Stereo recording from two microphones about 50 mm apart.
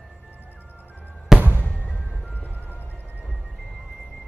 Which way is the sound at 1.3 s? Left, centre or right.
Centre.